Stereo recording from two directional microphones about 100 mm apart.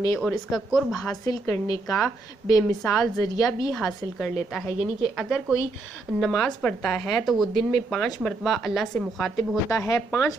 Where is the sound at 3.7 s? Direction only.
5° left (ahead or behind).